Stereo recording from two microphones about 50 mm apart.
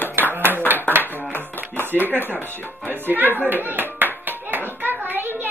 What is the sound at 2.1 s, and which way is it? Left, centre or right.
Child singing, left.